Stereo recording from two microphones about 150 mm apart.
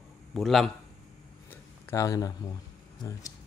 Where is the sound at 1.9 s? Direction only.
20° left (ahead or behind).